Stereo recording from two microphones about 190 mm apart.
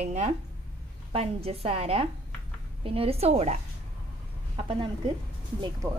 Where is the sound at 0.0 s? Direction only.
35° right (ahead or behind).